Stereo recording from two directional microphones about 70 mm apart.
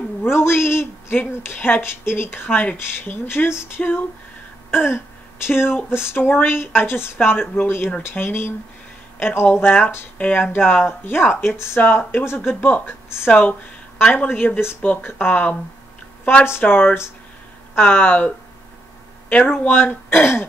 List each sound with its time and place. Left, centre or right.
0.2 s a sound: left
1.5 s speech: left
14.6 s speech: left
14.9 s speech: left
16.4 s speech: left
17.7 s speech: left